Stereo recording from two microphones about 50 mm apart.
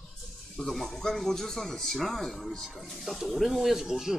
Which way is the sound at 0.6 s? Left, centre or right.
Centre.